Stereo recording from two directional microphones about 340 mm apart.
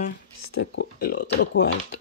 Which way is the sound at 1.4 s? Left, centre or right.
Left.